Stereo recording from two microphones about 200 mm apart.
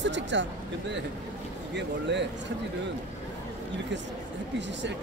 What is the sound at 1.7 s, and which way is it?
Speech, 60° right (ahead or behind).